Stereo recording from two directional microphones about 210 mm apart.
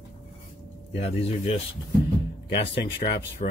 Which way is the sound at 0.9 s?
30° left (ahead or behind).